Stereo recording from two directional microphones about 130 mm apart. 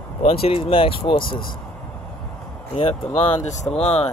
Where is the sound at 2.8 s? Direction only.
50° left (ahead or behind).